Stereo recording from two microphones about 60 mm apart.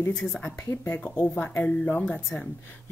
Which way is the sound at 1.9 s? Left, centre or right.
Left.